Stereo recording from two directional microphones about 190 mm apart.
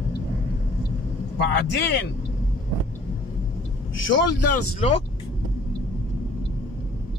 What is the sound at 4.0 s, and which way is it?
Speech, 75° left (ahead or behind).